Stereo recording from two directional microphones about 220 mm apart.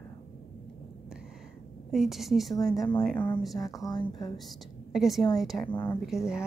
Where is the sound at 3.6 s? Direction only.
15° left (ahead or behind).